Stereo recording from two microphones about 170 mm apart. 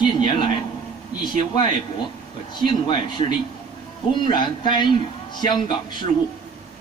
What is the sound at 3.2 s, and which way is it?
A man's voice, 30° left (ahead or behind).